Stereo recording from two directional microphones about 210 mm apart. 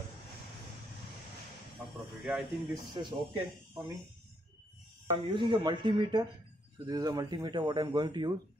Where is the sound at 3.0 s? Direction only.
20° right (ahead or behind).